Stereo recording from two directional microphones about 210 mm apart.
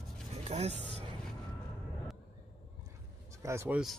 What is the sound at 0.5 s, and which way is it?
Speech, 30° right (ahead or behind).